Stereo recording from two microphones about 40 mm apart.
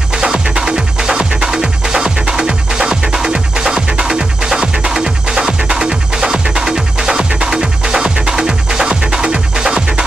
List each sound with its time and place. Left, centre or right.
0.1 s music: centre